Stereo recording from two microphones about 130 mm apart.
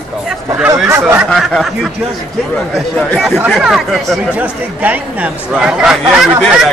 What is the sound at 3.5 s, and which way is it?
Speech, centre (ahead or behind).